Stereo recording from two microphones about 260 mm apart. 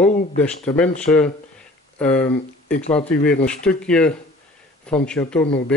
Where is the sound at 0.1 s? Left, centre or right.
Left.